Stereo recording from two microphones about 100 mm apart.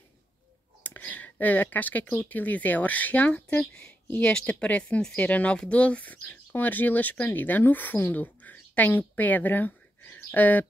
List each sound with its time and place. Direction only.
0.8 s speech: 15° left (ahead or behind)